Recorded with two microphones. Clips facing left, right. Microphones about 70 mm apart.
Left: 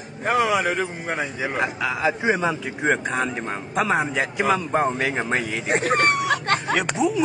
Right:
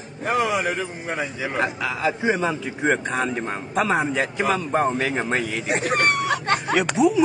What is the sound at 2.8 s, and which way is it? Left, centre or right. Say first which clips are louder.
A man's voice: even; centre.